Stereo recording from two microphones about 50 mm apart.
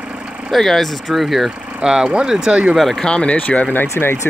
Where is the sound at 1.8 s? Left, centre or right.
Centre.